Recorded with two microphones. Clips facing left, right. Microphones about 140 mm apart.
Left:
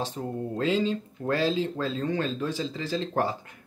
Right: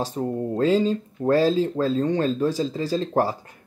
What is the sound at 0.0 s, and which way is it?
Speech, 40° right (ahead or behind).